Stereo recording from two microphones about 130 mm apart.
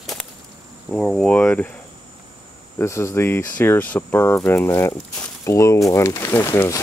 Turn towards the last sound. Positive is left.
turn(degrees=20)  # may be behind; listen again after turning